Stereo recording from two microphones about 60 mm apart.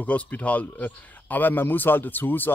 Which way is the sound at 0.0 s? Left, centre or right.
Left.